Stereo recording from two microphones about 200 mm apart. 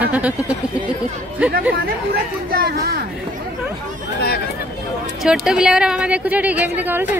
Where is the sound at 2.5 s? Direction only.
50° right (ahead or behind).